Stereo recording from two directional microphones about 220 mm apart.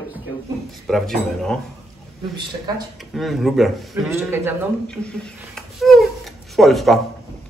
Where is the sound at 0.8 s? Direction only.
Centre (ahead or behind).